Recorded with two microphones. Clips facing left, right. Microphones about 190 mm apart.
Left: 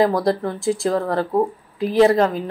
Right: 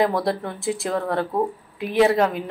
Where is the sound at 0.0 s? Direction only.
Centre (ahead or behind).